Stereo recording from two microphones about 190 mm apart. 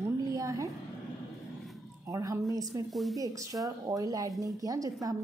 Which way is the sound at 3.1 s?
15° right (ahead or behind).